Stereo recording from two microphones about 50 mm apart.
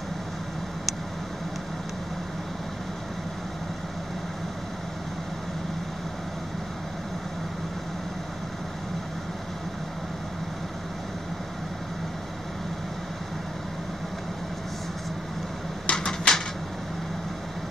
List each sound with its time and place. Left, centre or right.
15.9 s typewriter: centre